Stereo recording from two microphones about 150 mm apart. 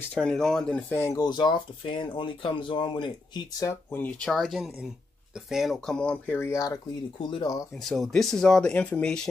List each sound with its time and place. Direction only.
0.1 s speech: 5° left (ahead or behind); by 3.1 s 30° left (ahead or behind)
3.5 s speech: 15° left (ahead or behind)
7.2 s speech: 30° left (ahead or behind)
7.8 s speech: centre (ahead or behind)